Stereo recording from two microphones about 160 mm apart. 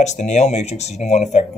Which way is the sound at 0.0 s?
45° left (ahead or behind).